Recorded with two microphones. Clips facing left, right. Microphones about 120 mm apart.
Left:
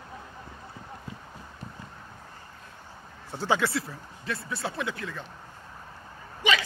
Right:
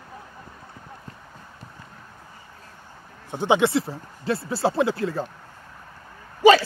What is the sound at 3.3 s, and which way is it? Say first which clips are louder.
Speech: right 7 dB; 20° right (ahead or behind).